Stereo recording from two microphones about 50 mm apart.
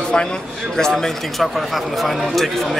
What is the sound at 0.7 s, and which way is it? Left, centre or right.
A man's voice, centre.